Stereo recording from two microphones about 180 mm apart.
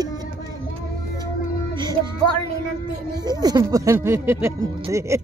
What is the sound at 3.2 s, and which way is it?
Speech, 20° right (ahead or behind).